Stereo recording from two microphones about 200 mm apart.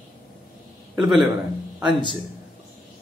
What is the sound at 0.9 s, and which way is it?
Speech, centre (ahead or behind).